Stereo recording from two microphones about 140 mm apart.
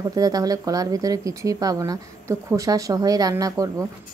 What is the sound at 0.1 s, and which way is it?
Speech, 25° right (ahead or behind).